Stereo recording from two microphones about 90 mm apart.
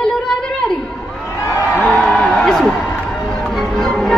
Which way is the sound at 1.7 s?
5° left (ahead or behind).